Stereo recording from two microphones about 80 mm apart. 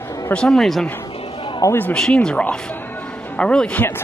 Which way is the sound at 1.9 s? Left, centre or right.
Centre.